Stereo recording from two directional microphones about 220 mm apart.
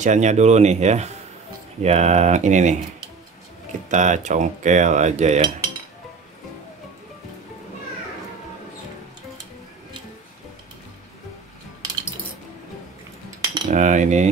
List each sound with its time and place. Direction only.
0.0 s cutlery: 30° right (ahead or behind)
3.9 s cutlery: 35° right (ahead or behind)
13.7 s cutlery: 35° right (ahead or behind)